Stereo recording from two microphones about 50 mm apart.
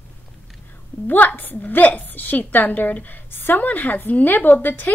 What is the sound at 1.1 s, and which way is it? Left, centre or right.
A woman's voice, left.